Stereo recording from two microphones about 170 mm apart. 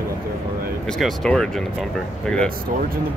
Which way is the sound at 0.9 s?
Centre (ahead or behind).